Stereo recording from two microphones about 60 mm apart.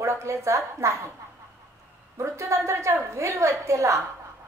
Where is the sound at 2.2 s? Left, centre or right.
Right.